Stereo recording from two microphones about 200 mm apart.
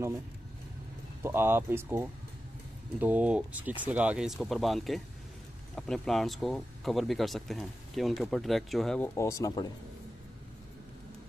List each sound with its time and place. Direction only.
1.2 s speech: 10° right (ahead or behind); by 9.7 s 15° left (ahead or behind)